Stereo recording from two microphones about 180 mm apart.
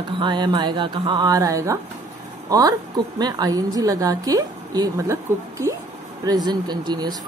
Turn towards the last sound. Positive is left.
turn(degrees=-25)  # may be behind; listen again after turning